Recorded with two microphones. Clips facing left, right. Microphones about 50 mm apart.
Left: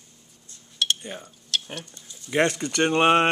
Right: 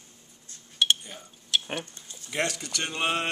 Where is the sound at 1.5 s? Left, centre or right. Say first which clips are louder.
Right 1 dB; centre.